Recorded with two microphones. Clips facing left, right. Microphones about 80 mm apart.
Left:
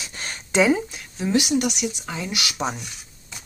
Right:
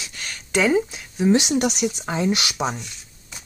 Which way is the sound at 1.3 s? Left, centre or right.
Right.